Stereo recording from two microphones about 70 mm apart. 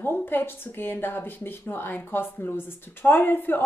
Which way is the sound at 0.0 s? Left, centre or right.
Left.